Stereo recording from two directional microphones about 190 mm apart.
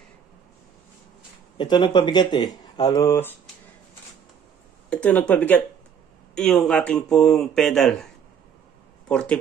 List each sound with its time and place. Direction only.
1.6 s speech: 20° left (ahead or behind)
4.8 s speech: 5° left (ahead or behind)